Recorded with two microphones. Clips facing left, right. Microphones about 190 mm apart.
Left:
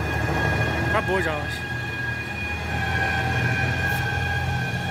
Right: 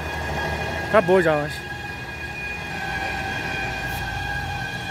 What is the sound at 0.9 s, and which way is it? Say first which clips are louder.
Speech: right 11 dB; 60° right (ahead or behind).